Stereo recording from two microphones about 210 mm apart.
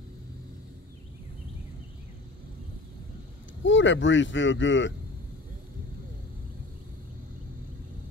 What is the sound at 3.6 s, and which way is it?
Speech, 60° left (ahead or behind).